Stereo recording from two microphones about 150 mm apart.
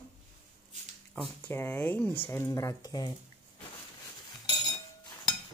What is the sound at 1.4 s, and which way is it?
Speech, 15° left (ahead or behind).